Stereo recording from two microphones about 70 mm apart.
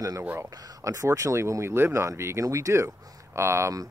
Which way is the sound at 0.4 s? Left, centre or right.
Right.